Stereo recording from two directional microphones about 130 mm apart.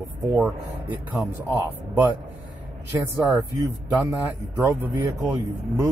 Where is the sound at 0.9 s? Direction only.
15° right (ahead or behind).